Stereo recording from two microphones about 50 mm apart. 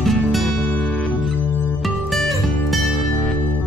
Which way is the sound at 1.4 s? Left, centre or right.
Right.